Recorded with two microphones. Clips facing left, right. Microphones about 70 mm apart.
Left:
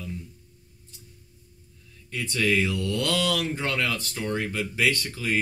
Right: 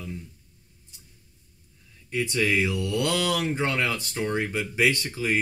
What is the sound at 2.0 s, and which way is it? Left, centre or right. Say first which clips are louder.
Speech: right 1 dB; centre.